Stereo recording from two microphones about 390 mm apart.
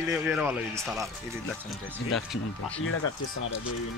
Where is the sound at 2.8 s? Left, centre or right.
Left.